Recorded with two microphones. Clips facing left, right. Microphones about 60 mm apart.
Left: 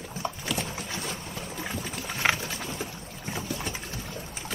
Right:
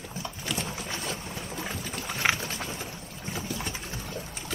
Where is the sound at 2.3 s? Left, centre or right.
Right.